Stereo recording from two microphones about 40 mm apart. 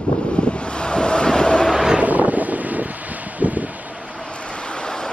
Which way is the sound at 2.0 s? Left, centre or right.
Right.